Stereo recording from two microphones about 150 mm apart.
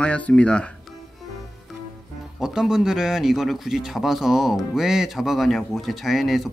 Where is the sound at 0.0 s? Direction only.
10° left (ahead or behind).